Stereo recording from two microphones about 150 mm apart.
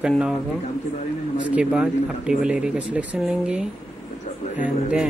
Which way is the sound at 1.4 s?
10° right (ahead or behind).